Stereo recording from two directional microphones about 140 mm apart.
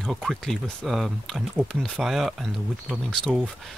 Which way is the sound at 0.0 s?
Centre (ahead or behind).